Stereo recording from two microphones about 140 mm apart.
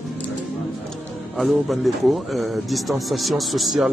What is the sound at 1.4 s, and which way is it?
Speech, centre (ahead or behind).